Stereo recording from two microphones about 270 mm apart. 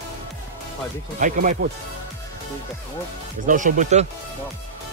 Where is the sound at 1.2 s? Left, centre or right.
Right.